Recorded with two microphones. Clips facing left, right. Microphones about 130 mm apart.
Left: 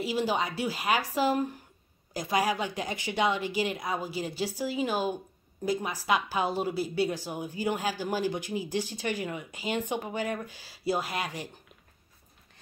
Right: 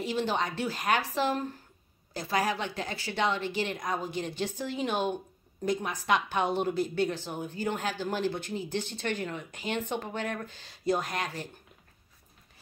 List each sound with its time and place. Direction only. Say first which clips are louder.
0.0 s a woman's voice: left 1 dB; 10° left (ahead or behind)